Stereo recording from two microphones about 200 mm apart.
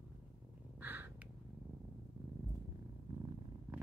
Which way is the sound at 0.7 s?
10° right (ahead or behind).